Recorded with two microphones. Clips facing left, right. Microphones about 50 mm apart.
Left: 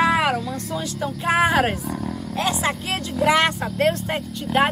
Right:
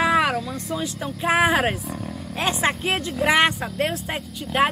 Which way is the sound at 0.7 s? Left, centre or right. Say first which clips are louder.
Left 1 dB; centre.